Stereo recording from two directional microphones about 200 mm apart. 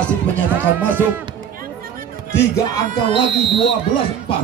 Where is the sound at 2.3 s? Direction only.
20° left (ahead or behind).